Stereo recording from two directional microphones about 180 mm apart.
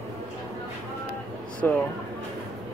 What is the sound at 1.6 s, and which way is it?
Speech, 10° left (ahead or behind).